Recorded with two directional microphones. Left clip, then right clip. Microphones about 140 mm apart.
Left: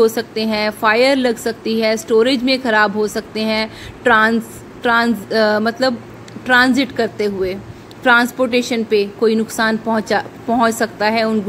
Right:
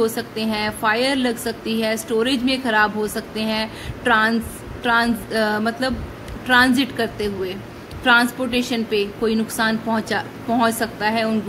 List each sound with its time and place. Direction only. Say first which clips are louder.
0.0 s a woman's voice: left 6 dB; 40° left (ahead or behind)